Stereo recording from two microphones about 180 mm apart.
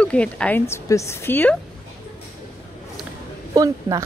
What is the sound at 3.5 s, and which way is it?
Speech, 20° right (ahead or behind).